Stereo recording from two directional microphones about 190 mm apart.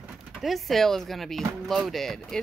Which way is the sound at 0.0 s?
Centre (ahead or behind).